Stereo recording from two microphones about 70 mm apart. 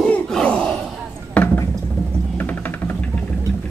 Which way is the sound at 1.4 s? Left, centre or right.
Centre.